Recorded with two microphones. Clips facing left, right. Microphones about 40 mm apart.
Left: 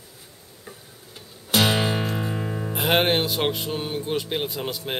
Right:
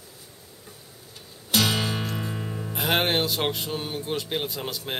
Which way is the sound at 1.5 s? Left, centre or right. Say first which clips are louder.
Left 3 dB; left.